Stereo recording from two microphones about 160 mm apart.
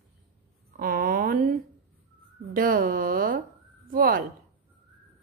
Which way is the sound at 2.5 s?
65° right (ahead or behind).